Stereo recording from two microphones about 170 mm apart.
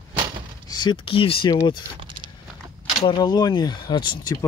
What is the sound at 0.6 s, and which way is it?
Speech, 25° left (ahead or behind).